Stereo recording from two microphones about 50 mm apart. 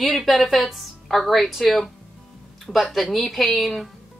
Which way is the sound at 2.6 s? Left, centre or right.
Centre.